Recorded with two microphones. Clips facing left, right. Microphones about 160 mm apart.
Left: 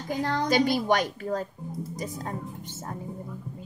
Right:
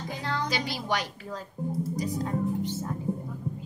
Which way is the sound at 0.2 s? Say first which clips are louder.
Left 8 dB; 45° left (ahead or behind).